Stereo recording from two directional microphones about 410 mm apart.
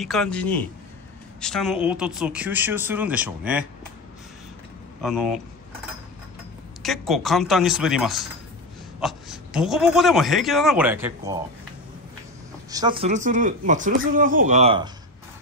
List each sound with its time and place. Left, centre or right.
0.0 s a man's voice: centre
5.0 s a man's voice: centre
6.8 s a man's voice: centre
12.7 s speech: centre